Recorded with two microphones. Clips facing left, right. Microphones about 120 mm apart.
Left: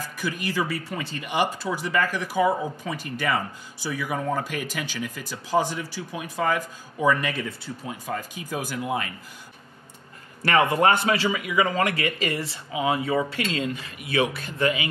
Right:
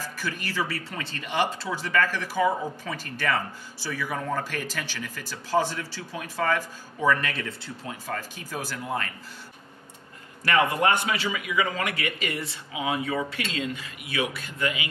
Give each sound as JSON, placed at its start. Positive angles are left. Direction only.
{"t": 0.0, "sound": "speech", "side_deg": 15}
{"t": 10.5, "sound": "a man's voice", "side_deg": 30}